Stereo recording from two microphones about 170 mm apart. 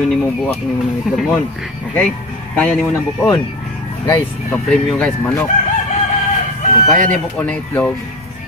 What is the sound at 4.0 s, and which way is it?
Speech, 20° left (ahead or behind).